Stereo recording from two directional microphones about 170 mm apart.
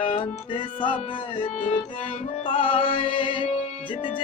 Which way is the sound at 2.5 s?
30° left (ahead or behind).